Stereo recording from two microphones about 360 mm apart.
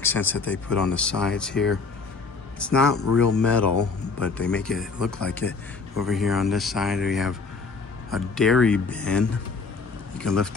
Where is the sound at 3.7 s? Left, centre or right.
Left.